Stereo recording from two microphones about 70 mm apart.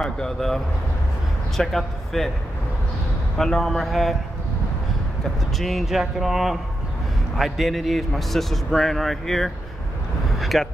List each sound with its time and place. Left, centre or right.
0.0 s speech: centre
1.6 s a man's voice: centre
3.3 s a man's voice: centre
5.2 s a man's voice: centre